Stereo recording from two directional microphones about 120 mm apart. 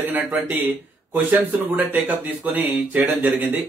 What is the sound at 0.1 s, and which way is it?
Speech, 15° right (ahead or behind).